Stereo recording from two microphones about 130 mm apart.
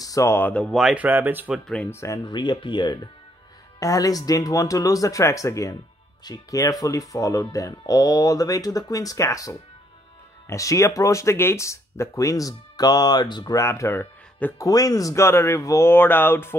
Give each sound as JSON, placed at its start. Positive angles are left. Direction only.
{"t": 0.0, "sound": "speech", "side_deg": 25}
{"t": 0.7, "sound": "speech", "side_deg": -5}
{"t": 1.0, "sound": "speech", "side_deg": -15}
{"t": 1.9, "sound": "speech", "side_deg": 25}
{"t": 2.2, "sound": "speech", "side_deg": 35}
{"t": 14.7, "sound": "speech", "side_deg": 30}